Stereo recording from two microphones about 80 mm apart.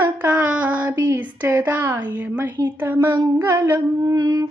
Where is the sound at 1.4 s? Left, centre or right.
Right.